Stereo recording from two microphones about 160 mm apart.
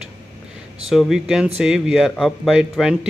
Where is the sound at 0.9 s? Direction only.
Centre (ahead or behind).